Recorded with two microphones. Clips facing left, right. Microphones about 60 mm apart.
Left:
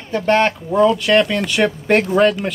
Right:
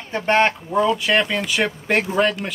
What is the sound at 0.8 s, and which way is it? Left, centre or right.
Speech, centre.